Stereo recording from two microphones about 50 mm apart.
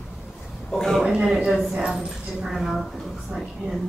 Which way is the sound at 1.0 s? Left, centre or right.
Centre.